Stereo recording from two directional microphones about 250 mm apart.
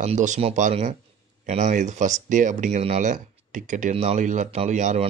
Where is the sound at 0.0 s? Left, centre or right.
Right.